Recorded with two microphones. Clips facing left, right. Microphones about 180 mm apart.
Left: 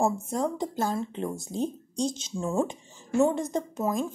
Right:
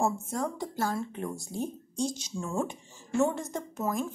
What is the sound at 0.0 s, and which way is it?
Speech, 20° left (ahead or behind).